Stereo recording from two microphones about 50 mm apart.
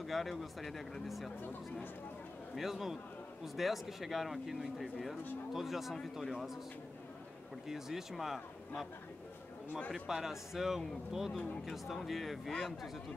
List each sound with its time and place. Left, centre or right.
0.0 s speech: centre
1.4 s speech: left
2.5 s speech: centre
7.6 s speech: centre
9.9 s speech: centre